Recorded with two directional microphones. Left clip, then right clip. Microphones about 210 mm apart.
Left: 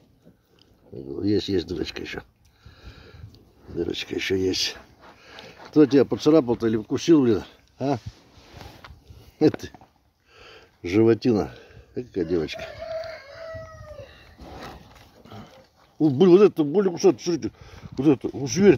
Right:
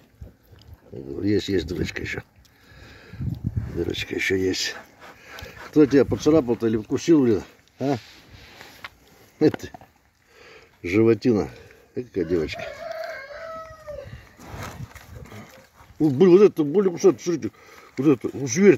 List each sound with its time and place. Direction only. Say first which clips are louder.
1.1 s speech: right 1 dB; centre (ahead or behind)
2.8 s a sound: right 2 dB; centre (ahead or behind)
3.9 s speech: right 3 dB; centre (ahead or behind)
9.4 s speech: even; centre (ahead or behind)
14.4 s a sound: right 2 dB; 50° right (ahead or behind)
16.0 s speech: right 1 dB; 5° left (ahead or behind)